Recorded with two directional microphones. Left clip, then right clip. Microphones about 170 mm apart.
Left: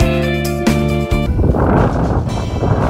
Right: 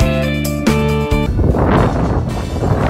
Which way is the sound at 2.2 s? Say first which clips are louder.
Left 1 dB; 15° right (ahead or behind).